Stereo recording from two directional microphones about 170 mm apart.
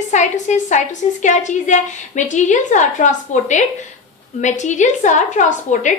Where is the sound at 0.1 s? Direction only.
45° left (ahead or behind).